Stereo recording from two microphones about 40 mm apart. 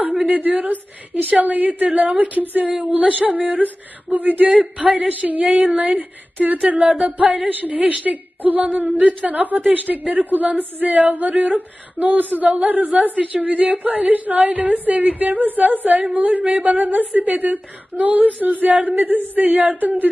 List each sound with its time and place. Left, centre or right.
0.0 s a sound: right
1.4 s a woman's voice: right
4.5 s a woman's voice: right